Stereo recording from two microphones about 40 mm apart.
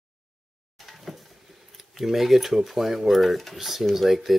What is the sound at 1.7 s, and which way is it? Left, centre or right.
Speech, centre.